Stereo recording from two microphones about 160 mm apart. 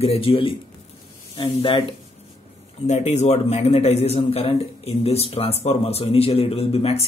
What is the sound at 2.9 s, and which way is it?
A man's voice, 45° left (ahead or behind).